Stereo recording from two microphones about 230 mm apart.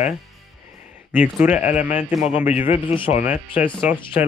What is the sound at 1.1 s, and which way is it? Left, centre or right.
Speech, centre.